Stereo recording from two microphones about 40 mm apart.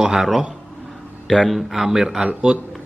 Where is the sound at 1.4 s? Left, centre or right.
Centre.